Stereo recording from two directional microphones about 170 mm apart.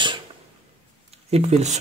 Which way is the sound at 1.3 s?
40° right (ahead or behind).